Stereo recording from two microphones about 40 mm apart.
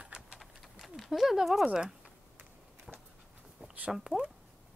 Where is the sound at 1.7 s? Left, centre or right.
Right.